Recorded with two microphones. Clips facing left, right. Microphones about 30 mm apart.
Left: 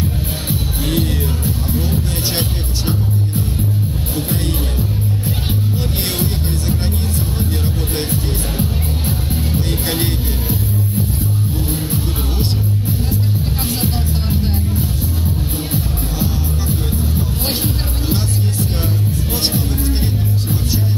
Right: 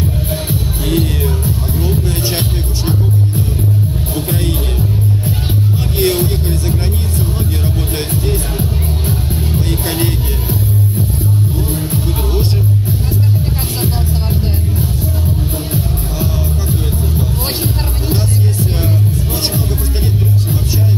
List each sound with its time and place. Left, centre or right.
0.8 s music: right
7.6 s music: centre